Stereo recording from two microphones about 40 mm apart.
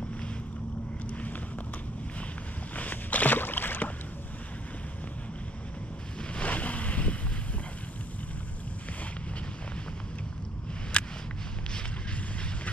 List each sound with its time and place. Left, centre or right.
2.7 s boat: left
6.3 s boat: left
10.9 s a sound: left